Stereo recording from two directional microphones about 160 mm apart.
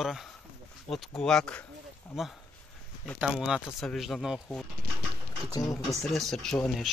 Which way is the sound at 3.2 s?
5° right (ahead or behind).